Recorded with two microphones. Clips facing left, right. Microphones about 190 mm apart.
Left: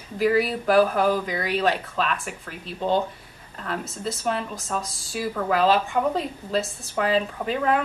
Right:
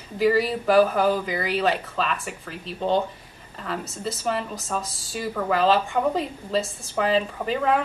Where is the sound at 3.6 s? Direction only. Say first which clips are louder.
Even; 5° right (ahead or behind).